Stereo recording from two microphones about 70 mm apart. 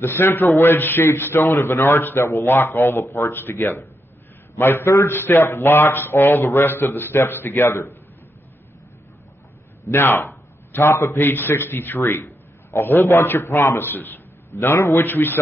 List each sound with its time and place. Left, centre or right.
0.0 s speech: left
9.8 s a man's voice: left